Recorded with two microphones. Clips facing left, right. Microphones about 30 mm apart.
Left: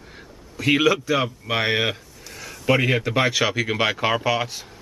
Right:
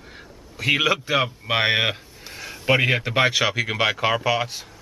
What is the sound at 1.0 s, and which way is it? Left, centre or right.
A man's voice, right.